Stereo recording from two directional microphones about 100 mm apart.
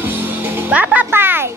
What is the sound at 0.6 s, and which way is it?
Music, 15° right (ahead or behind).